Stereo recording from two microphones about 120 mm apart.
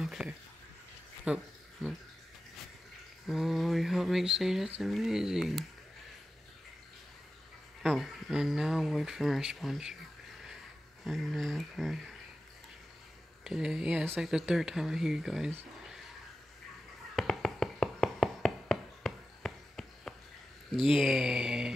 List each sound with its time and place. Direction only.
0.0 s a sound: 5° right (ahead or behind)
3.3 s speech: centre (ahead or behind)
7.8 s speech: centre (ahead or behind)
11.1 s speech: centre (ahead or behind)
13.4 s speech: 5° right (ahead or behind)
17.1 s a sound: 5° left (ahead or behind)
20.7 s speech: centre (ahead or behind)